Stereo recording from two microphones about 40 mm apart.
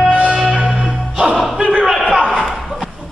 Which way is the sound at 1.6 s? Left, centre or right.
Right.